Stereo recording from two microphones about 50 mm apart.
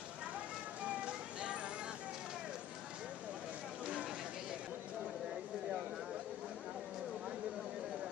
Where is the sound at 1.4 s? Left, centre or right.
Right.